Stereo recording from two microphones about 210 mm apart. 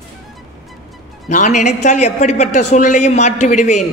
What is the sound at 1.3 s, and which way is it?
A man's voice, 35° left (ahead or behind).